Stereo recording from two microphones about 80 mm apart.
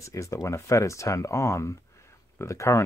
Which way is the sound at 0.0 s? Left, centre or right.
Left.